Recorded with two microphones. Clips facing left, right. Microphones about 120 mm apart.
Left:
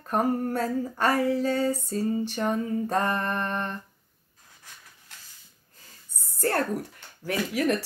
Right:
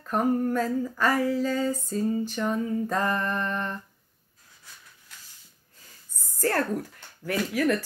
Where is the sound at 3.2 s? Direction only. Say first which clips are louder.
Even; 50° left (ahead or behind).